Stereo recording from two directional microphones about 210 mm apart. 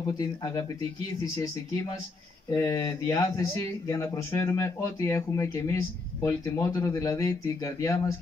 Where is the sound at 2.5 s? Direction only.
15° left (ahead or behind).